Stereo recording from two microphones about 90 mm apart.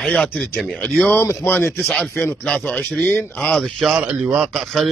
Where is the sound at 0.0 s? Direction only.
10° left (ahead or behind).